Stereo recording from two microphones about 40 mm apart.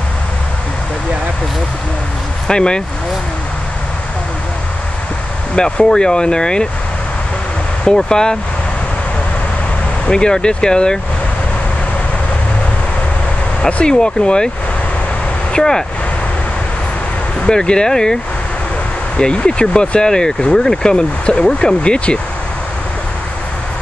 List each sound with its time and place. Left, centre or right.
2.4 s speech: left
5.9 s speech: left
7.8 s speech: centre
10.0 s speech: left
13.7 s speech: left
13.9 s speech: left
15.5 s speech: centre
17.5 s speech: left